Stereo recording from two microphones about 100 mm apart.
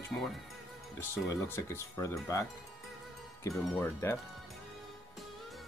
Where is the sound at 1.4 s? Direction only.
25° left (ahead or behind).